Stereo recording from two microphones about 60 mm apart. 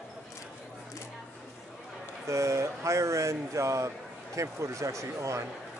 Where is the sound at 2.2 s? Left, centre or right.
Right.